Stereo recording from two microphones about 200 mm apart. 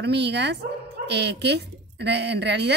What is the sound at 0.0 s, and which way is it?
A woman's voice, 55° right (ahead or behind).